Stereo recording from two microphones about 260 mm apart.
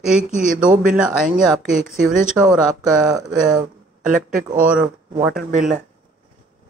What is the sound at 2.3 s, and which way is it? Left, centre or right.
Speech, centre.